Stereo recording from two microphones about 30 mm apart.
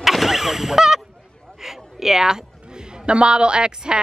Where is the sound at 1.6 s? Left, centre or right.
Centre.